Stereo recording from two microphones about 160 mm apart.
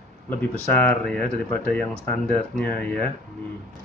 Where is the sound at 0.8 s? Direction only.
10° left (ahead or behind).